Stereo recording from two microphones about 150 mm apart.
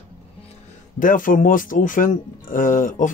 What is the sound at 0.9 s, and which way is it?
Speech, 65° left (ahead or behind).